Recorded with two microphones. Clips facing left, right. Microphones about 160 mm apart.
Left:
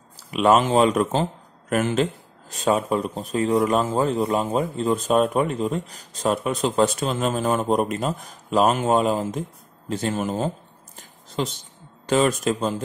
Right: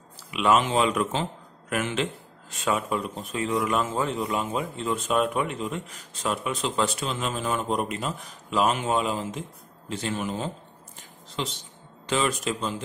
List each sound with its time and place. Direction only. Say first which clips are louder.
0.3 s speech: left 5 dB; 40° left (ahead or behind)